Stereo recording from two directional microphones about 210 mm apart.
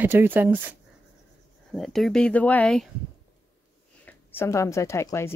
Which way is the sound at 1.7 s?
Centre (ahead or behind).